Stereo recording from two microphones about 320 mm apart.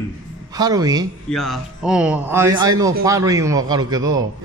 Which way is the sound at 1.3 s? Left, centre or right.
Centre.